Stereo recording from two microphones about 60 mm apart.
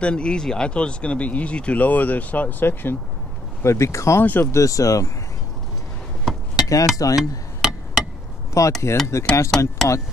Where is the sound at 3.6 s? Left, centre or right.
Left.